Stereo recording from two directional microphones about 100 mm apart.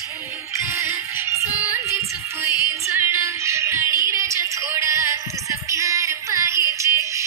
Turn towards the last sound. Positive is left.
turn(degrees=-30)  # may be behind; listen again after turning